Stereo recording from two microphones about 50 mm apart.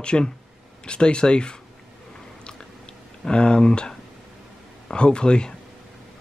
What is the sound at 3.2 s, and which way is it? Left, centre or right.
Speech, centre.